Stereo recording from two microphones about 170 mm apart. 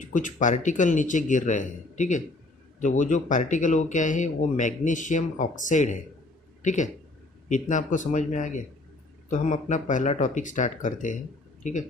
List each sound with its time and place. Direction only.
0.0 s speech: 50° left (ahead or behind)